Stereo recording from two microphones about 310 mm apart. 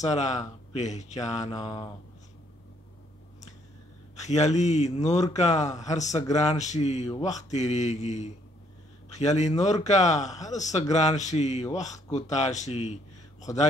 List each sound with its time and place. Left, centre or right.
0.0 s speech: left
1.1 s mantra: centre
4.3 s speech: left